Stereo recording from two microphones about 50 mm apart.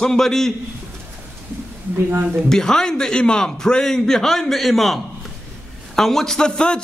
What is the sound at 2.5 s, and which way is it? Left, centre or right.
A man's voice, centre.